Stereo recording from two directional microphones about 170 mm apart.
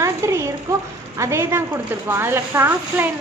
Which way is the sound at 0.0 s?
15° right (ahead or behind).